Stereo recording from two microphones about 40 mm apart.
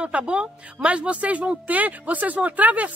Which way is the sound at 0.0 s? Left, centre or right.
Right.